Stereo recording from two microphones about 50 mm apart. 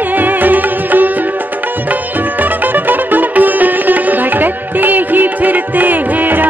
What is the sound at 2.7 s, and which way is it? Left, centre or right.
Music, right.